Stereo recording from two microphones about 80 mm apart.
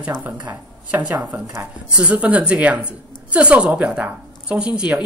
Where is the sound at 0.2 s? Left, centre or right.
Centre.